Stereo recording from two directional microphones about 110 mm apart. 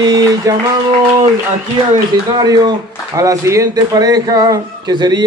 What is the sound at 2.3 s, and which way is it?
A man's voice, 35° right (ahead or behind).